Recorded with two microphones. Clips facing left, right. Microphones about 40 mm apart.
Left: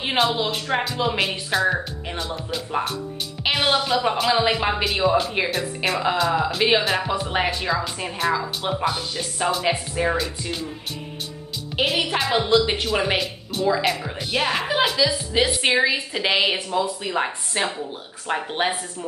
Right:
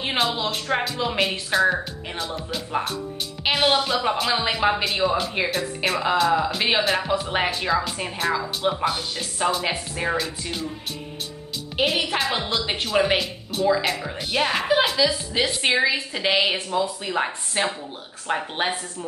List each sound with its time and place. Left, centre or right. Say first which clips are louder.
0.0 s a woman's voice: left 2 dB; centre
11.7 s a woman's voice: left 1 dB; centre
15.0 s a woman's voice: left 2 dB; centre
15.5 s a woman's voice: left 1 dB; centre